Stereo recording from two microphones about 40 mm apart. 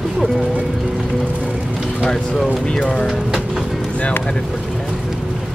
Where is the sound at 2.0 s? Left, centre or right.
Centre.